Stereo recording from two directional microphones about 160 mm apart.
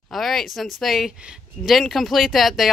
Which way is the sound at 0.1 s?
Centre (ahead or behind).